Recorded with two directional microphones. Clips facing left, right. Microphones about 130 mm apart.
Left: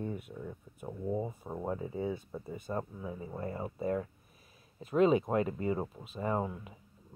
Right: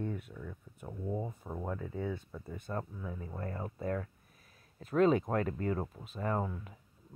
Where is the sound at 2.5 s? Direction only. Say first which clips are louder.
Left 2 dB; 10° left (ahead or behind).